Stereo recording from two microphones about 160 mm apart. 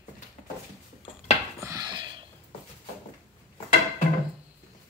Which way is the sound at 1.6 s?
20° right (ahead or behind).